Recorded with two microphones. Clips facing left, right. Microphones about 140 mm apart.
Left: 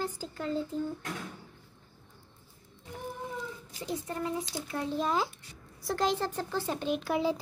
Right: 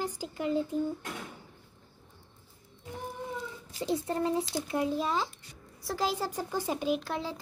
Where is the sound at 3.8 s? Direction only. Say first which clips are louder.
Right 5 dB; 30° right (ahead or behind).